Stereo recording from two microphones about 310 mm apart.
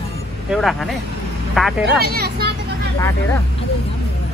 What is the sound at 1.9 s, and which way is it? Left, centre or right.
Speech, right.